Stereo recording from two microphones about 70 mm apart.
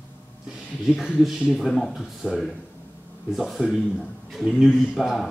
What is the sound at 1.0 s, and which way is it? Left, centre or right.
Speech, centre.